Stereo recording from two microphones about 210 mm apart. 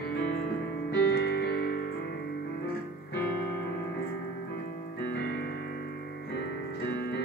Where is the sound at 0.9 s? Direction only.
50° left (ahead or behind).